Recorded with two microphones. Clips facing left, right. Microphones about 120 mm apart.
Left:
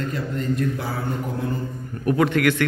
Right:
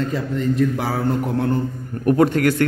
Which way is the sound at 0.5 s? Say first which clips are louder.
Right 5 dB; 90° right.